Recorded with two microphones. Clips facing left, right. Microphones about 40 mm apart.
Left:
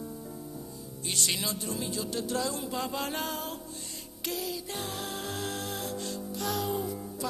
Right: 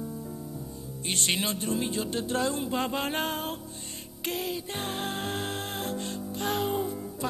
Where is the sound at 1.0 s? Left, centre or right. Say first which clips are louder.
Right 3 dB; right.